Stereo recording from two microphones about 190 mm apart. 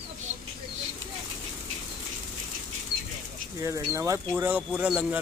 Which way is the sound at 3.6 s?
15° right (ahead or behind).